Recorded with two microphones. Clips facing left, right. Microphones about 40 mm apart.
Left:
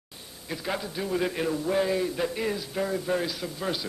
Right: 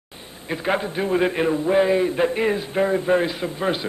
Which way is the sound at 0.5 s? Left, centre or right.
Right.